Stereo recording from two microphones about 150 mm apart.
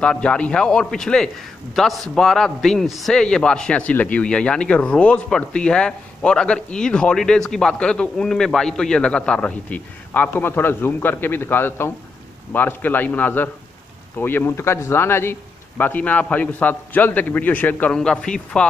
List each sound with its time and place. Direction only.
0.0 s a man's voice: 5° left (ahead or behind)